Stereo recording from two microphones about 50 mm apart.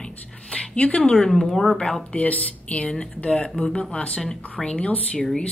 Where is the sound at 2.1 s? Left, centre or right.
Left.